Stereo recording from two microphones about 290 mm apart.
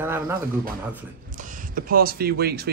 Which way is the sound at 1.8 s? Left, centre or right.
Right.